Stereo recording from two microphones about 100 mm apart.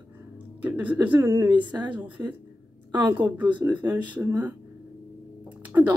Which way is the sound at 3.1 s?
15° right (ahead or behind).